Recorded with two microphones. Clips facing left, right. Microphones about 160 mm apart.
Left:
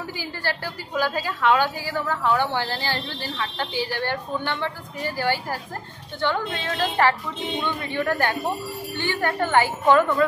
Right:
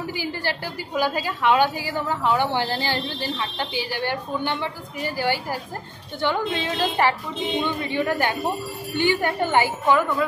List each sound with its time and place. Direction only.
0.0 s a woman's voice: 15° right (ahead or behind)